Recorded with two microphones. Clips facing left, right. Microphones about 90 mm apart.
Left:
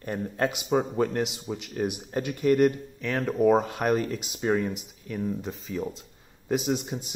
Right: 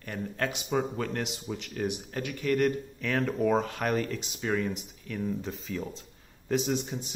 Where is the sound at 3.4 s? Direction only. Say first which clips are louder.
Left 8 dB; 15° left (ahead or behind).